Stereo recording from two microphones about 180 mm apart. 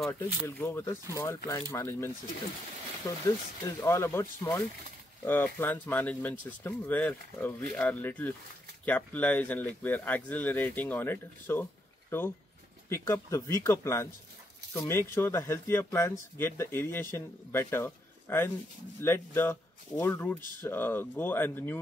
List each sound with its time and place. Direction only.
0.0 s speech: 10° left (ahead or behind)
3.3 s speech: 15° left (ahead or behind)
12.9 s speech: 15° left (ahead or behind)